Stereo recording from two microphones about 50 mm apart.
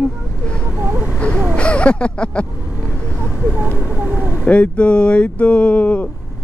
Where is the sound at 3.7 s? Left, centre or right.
Right.